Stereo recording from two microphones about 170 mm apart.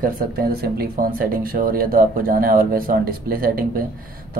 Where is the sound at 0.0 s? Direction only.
60° right (ahead or behind).